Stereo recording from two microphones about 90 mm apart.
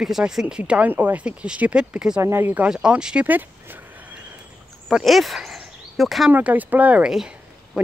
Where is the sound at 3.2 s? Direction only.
20° right (ahead or behind).